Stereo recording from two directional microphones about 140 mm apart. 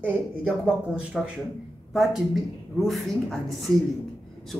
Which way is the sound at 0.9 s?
5° right (ahead or behind).